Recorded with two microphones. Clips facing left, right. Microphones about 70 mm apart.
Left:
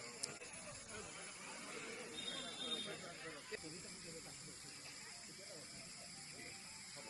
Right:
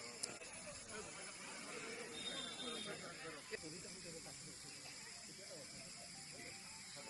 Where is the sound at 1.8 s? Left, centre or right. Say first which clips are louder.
Right 1 dB; left.